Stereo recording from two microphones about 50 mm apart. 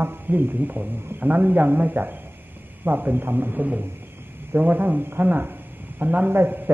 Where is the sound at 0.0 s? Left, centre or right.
Right.